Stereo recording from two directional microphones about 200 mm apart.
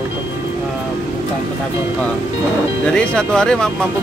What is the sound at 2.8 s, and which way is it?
Speech, 5° left (ahead or behind).